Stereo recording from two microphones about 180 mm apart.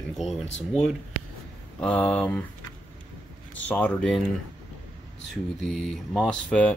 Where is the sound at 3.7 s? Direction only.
5° left (ahead or behind).